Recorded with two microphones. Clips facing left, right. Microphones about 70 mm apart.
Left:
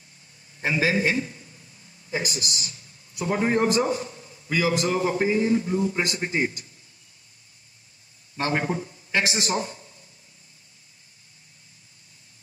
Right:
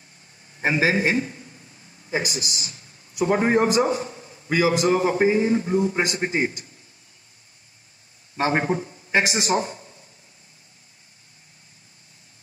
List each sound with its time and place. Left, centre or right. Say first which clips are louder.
0.6 s a sound: right 2 dB; right
3.3 s a man's voice: right 3 dB; right
4.8 s a man's voice: right 4 dB; right
8.4 s a man's voice: right 4 dB; right